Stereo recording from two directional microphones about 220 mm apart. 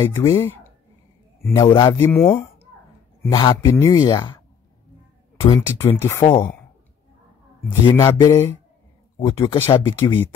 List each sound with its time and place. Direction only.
0.0 s a man's voice: 10° left (ahead or behind)
5.8 s speech: 10° left (ahead or behind)
7.8 s speech: 20° left (ahead or behind)